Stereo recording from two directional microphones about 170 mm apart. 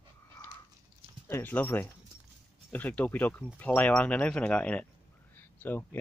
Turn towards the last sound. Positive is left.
turn(degrees=10)  # may be behind; listen again after turning